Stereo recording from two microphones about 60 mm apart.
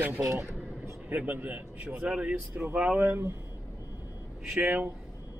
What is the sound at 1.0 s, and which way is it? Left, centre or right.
A man's voice, right.